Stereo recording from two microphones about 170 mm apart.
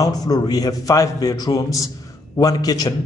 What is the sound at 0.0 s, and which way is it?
A man's voice, 20° left (ahead or behind).